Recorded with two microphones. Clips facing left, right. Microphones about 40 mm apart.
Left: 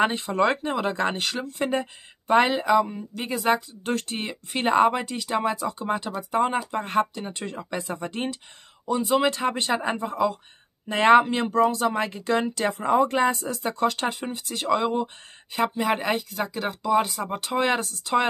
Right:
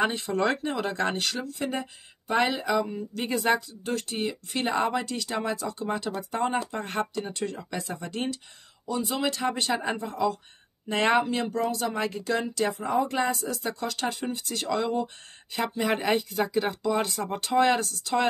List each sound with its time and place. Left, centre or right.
0.0 s speech: left
1.6 s speech: left
3.3 s speech: centre
3.8 s speech: left
4.9 s speech: left
6.8 s speech: centre
7.2 s speech: left
12.7 s speech: left
14.2 s speech: centre
15.5 s speech: centre
17.6 s speech: left